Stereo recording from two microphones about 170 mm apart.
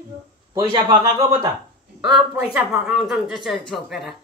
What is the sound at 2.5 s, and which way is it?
Speech, 5° right (ahead or behind).